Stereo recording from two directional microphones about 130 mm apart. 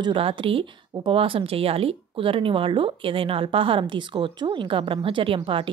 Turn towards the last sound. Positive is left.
turn(degrees=-40)  # may be behind; listen again after turning